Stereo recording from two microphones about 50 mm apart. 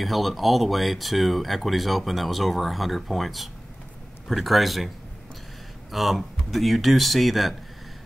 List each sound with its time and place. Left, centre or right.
0.0 s speech: centre